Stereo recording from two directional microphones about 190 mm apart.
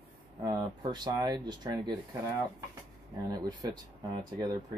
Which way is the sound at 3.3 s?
20° right (ahead or behind).